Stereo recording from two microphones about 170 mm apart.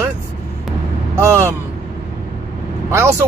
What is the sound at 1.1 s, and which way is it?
Speech, 15° right (ahead or behind).